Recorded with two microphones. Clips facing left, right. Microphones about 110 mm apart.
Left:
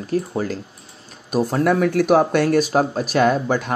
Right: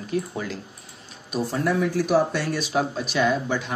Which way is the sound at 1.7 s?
65° left (ahead or behind).